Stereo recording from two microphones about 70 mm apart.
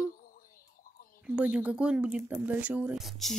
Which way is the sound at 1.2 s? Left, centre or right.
Centre.